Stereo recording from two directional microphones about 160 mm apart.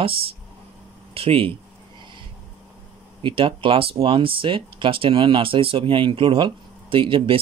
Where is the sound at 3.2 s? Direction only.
35° right (ahead or behind).